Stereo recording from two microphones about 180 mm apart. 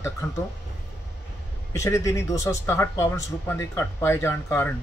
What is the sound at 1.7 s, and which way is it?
Speech, 15° left (ahead or behind).